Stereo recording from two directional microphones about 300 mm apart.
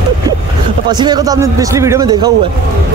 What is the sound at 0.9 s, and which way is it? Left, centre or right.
A man's voice, centre.